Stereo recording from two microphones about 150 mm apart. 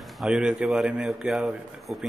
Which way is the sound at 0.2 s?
5° right (ahead or behind).